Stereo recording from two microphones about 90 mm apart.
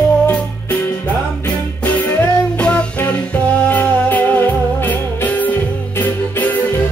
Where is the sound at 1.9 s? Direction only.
20° left (ahead or behind).